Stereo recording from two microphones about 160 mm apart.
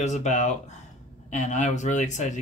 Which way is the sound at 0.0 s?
45° left (ahead or behind).